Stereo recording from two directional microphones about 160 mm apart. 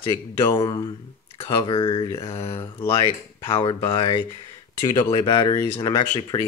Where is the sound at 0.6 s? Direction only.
20° left (ahead or behind).